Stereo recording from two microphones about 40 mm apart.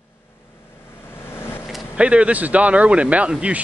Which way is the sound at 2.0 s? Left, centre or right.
Right.